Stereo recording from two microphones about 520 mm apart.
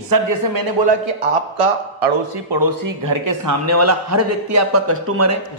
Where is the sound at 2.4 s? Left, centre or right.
Right.